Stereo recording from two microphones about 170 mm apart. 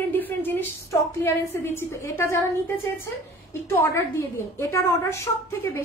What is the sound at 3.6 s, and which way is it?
A woman's voice, 15° left (ahead or behind).